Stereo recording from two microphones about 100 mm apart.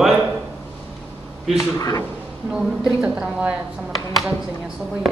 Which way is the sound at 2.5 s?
10° right (ahead or behind).